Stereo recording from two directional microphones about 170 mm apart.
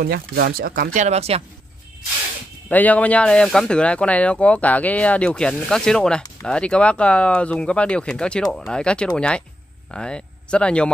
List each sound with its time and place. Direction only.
0.0 s speech: 65° right (ahead or behind); by 1.4 s 40° right (ahead or behind)
2.7 s speech: 10° left (ahead or behind)